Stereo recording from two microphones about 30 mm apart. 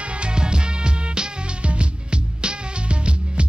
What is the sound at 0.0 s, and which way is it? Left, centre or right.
Music, right.